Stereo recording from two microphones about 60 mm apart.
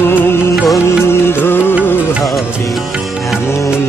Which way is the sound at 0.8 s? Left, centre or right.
Left.